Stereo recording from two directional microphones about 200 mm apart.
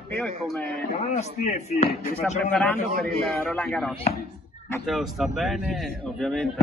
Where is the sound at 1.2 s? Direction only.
35° left (ahead or behind).